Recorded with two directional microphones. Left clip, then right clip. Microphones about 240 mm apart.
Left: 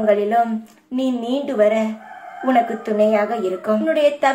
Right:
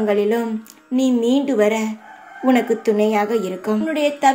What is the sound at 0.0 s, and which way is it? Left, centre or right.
A woman's voice, right.